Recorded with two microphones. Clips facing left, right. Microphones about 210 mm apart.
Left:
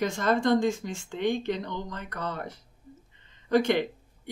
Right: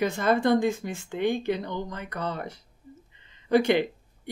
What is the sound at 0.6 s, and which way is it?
Speech, 60° right (ahead or behind).